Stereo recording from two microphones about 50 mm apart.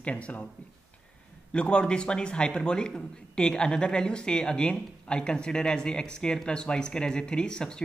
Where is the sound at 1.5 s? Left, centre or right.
Centre.